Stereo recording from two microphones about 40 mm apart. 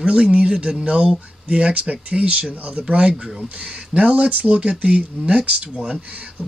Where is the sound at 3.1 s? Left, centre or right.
Centre.